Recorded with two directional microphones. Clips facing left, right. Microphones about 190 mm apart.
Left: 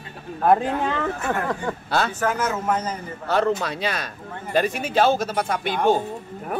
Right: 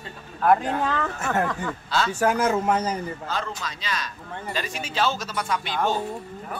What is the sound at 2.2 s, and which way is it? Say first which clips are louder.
Speech: right 2 dB; 35° right (ahead or behind).